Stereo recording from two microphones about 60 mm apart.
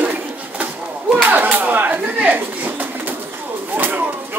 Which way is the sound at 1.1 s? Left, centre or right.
Right.